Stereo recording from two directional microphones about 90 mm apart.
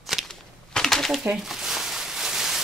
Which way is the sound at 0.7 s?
5° left (ahead or behind).